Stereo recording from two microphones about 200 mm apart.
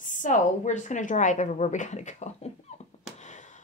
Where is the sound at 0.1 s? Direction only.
40° left (ahead or behind).